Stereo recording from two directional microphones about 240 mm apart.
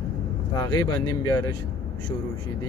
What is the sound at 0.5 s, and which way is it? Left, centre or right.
Speech, centre.